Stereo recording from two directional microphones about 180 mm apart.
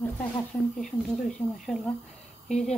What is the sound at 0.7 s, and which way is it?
A woman's voice, centre (ahead or behind).